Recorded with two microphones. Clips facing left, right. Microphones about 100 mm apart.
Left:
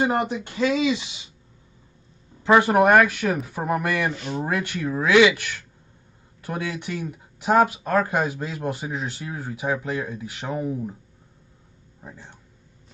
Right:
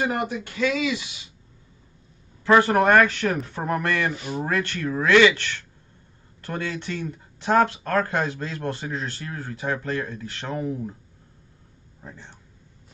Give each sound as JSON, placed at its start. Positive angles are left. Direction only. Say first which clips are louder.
{"t": 0.0, "sound": "speech", "louder": "left 3 dB", "side_deg": 25}
{"t": 2.4, "sound": "speech", "louder": "left 1 dB", "side_deg": 15}
{"t": 4.1, "sound": "speech", "louder": "left 1 dB", "side_deg": -5}
{"t": 4.5, "sound": "speech", "louder": "right 1 dB", "side_deg": 15}
{"t": 12.0, "sound": "speech", "louder": "even", "side_deg": 10}